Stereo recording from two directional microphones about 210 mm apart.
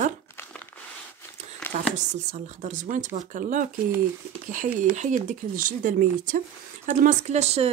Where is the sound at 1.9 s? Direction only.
35° right (ahead or behind).